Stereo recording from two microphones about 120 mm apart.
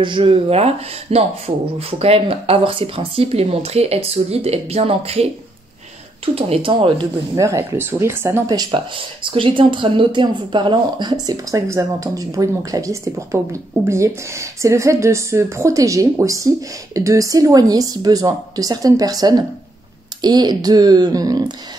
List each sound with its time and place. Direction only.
0.0 s speech: 45° right (ahead or behind)
7.3 s speech: 25° right (ahead or behind)
8.5 s a woman's voice: 40° right (ahead or behind)